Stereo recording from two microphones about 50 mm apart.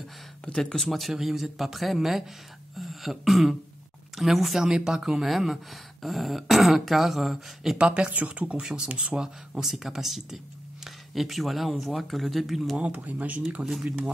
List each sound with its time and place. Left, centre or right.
0.6 s speech: centre
2.8 s a sound: centre
4.2 s speech: centre
7.7 s speech: centre
8.5 s speech: centre
12.7 s speech: right